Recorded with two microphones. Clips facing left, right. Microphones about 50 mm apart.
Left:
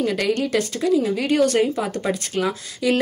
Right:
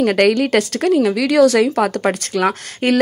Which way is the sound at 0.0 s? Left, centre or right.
Right.